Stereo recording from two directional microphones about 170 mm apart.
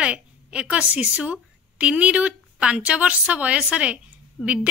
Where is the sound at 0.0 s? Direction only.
5° right (ahead or behind).